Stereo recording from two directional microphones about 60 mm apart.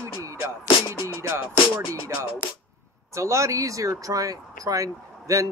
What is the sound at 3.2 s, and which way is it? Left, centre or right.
Speech, right.